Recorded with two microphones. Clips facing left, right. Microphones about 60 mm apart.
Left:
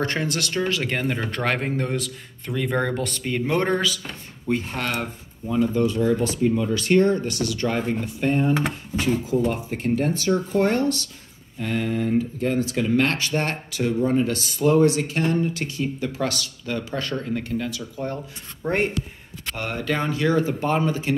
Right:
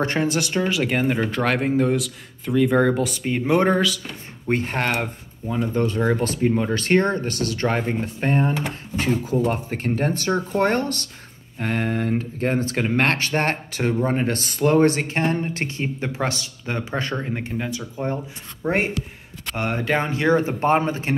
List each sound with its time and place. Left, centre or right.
0.0 s speech: centre
4.5 s speech: right
18.6 s speech: centre
19.5 s speech: right